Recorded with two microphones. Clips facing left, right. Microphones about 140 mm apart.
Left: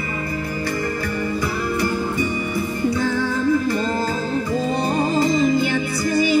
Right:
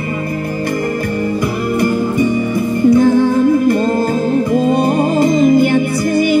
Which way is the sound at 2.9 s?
50° right (ahead or behind).